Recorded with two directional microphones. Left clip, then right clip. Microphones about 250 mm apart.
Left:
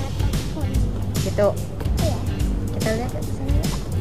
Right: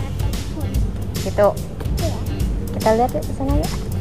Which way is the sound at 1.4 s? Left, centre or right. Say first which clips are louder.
Right 4 dB; centre.